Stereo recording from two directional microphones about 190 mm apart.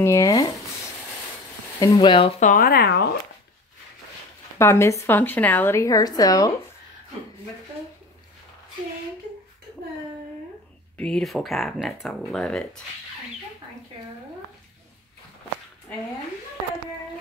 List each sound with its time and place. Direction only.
0.0 s speech: 15° left (ahead or behind)
1.8 s speech: 20° left (ahead or behind)
2.4 s speech: 50° left (ahead or behind)
4.6 s speech: 15° left (ahead or behind)
11.0 s speech: 5° left (ahead or behind)